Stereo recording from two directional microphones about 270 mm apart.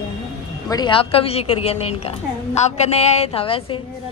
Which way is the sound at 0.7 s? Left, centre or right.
Centre.